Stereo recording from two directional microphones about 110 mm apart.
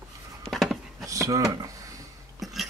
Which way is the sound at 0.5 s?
Centre (ahead or behind).